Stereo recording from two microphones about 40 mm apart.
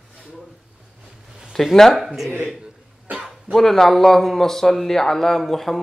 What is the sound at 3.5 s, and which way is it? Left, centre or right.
Speech, centre.